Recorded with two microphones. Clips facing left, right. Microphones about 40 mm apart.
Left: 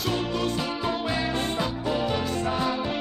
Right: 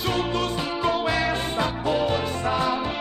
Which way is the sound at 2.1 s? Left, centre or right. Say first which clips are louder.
Right 2 dB; centre.